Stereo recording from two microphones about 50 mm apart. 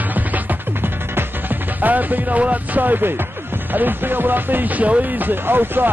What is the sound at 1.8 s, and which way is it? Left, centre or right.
Speech, right.